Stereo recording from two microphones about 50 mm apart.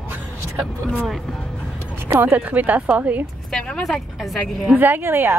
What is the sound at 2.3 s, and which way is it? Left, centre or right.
Speech, right.